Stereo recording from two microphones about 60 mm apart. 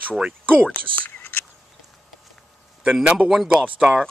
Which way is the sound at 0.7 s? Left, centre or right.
Left.